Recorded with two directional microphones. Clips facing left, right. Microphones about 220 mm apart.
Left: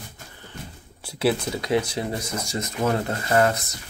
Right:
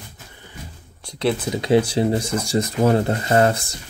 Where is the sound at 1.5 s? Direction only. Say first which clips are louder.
Right 6 dB; 30° right (ahead or behind).